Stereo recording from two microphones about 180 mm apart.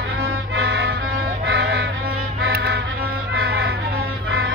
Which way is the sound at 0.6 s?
65° right (ahead or behind).